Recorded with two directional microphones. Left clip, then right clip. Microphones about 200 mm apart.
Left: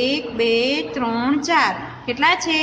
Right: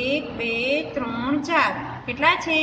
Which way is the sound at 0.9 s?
45° left (ahead or behind).